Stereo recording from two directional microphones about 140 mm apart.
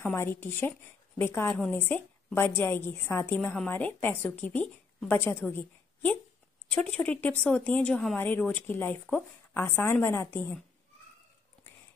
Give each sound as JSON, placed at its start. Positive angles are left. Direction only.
{"t": 0.0, "sound": "speech", "side_deg": 15}
{"t": 6.7, "sound": "speech", "side_deg": 10}